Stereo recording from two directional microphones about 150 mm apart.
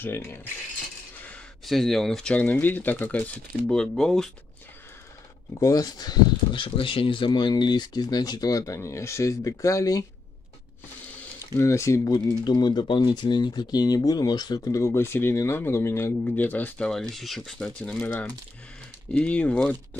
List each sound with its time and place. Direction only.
0.0 s speech: 15° left (ahead or behind)
5.5 s speech: 20° left (ahead or behind)
11.5 s speech: 20° left (ahead or behind)